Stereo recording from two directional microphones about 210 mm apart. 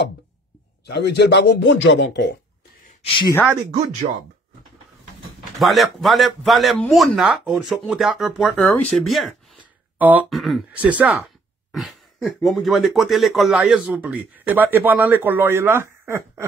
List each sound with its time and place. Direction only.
0.8 s a man's voice: 50° left (ahead or behind)
3.0 s speech: 25° left (ahead or behind)
5.6 s a man's voice: centre (ahead or behind)
11.7 s throat clearing: centre (ahead or behind)
12.4 s speech: centre (ahead or behind)